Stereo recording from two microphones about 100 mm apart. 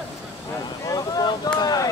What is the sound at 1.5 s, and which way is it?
Speech, 40° left (ahead or behind).